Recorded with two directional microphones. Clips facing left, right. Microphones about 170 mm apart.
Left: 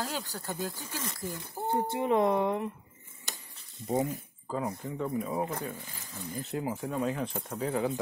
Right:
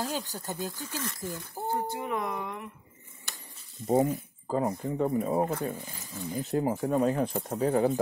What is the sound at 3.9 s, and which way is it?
Speech, 35° right (ahead or behind).